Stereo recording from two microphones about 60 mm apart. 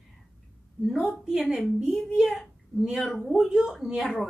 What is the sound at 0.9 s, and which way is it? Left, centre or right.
A woman's voice, centre.